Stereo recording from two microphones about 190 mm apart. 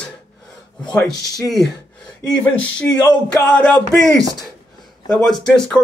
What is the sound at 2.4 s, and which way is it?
Speech, 5° left (ahead or behind).